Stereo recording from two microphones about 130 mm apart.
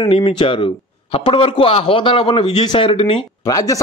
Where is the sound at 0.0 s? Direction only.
45° left (ahead or behind).